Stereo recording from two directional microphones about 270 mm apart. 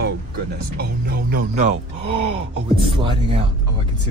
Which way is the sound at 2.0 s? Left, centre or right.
Right.